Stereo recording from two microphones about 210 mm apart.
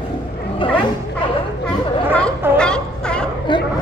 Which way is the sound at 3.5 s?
20° left (ahead or behind).